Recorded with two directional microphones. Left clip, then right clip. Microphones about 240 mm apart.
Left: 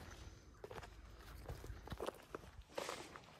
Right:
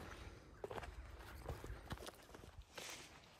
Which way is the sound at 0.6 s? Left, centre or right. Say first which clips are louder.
Right 4 dB; centre.